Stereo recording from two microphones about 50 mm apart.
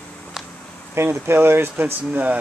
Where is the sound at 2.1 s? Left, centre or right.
Right.